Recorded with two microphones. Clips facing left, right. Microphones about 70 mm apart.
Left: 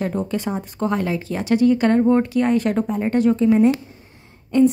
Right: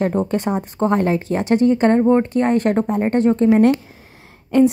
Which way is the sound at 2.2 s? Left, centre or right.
Right.